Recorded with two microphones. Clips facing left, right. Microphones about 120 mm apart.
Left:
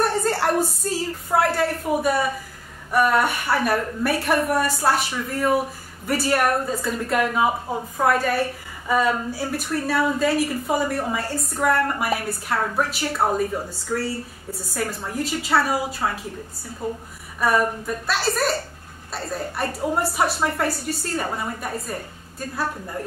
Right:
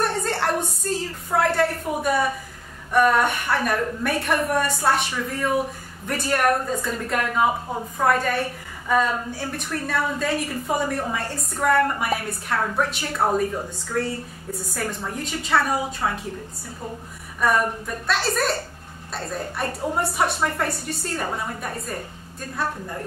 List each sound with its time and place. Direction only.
0.0 s a woman's voice: centre (ahead or behind)
17.4 s a woman's voice: 5° left (ahead or behind)